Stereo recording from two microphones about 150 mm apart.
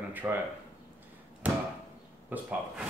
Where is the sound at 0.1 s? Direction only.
10° right (ahead or behind).